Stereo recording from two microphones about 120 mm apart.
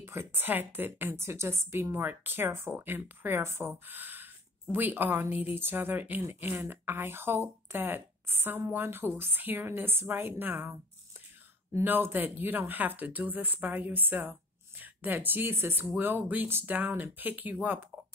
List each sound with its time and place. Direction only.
0.0 s speech: 20° right (ahead or behind)